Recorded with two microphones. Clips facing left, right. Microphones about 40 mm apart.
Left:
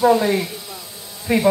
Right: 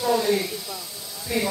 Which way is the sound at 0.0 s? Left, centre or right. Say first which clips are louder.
Left 6 dB; left.